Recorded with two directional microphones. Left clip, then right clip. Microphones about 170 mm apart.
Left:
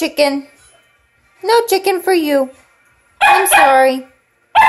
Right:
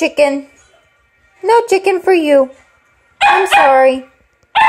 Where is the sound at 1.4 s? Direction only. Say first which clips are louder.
Right 2 dB; centre (ahead or behind).